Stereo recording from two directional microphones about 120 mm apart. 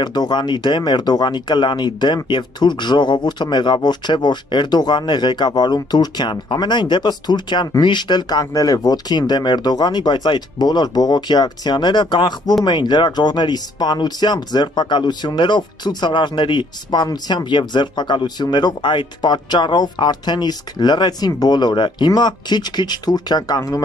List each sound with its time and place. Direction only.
0.0 s speech: 35° left (ahead or behind)